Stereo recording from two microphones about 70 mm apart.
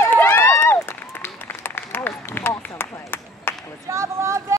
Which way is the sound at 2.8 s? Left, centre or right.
Left.